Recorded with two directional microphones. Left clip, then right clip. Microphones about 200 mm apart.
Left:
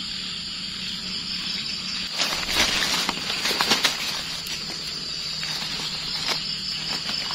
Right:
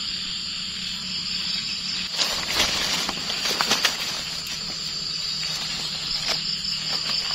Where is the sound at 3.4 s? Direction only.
15° left (ahead or behind).